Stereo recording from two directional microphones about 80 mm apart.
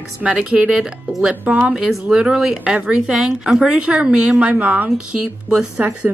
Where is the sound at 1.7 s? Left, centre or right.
Centre.